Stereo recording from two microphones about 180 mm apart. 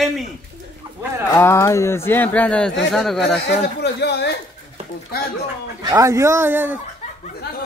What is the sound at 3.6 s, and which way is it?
Speech, 65° left (ahead or behind).